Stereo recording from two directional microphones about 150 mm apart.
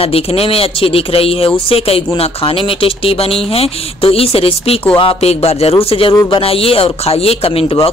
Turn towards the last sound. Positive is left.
turn(degrees=40)  # may be behind; listen again after turning